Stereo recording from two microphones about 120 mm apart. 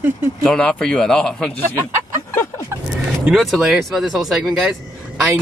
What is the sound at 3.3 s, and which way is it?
Speech, centre (ahead or behind).